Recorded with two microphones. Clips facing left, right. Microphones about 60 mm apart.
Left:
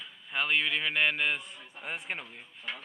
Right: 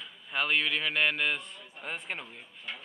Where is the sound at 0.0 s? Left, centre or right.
Centre.